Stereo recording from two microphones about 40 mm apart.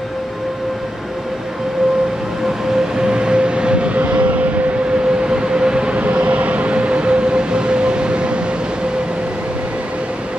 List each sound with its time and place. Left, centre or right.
3.0 s vehicle: right
5.2 s train: centre